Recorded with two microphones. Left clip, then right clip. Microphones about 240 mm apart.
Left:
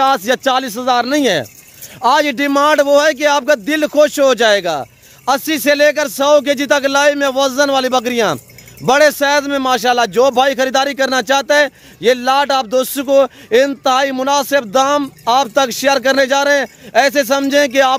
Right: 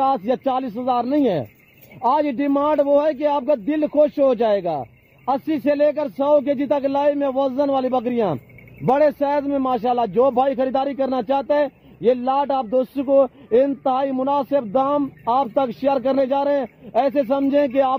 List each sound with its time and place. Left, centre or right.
0.0 s speech: centre
15.2 s speech: left
15.5 s speech: centre